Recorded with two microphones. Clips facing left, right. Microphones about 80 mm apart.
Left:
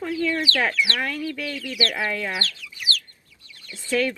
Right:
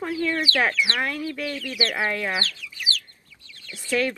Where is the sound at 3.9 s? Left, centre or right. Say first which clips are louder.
Left 1 dB; right.